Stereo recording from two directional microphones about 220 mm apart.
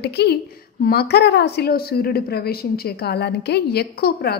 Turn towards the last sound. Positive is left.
turn(degrees=45)  # may be behind; listen again after turning